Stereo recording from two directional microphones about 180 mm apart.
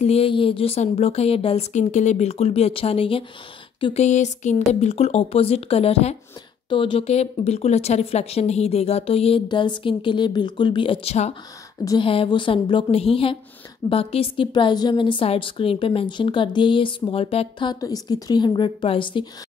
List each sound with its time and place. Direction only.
0.0 s speech: 35° left (ahead or behind)
11.8 s a woman's voice: 20° left (ahead or behind)